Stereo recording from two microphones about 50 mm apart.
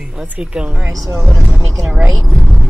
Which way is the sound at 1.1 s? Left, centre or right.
Right.